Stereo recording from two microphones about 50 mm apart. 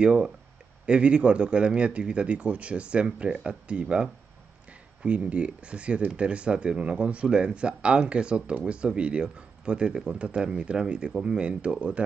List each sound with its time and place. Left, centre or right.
0.0 s speech: centre